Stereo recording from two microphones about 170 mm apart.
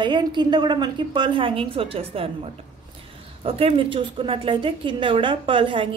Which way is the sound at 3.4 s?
35° right (ahead or behind).